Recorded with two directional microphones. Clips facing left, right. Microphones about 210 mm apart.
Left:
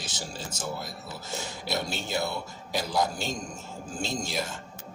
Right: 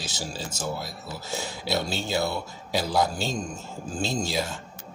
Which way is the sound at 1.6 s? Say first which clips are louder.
Right 4 dB; 85° right.